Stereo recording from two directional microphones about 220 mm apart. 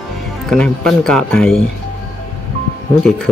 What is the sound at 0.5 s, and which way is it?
Speech, centre (ahead or behind).